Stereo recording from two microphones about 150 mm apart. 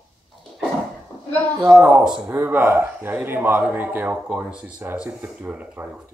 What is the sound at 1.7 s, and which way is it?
A man's voice, 5° right (ahead or behind).